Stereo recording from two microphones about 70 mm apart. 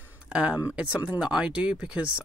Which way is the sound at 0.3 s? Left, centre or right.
Centre.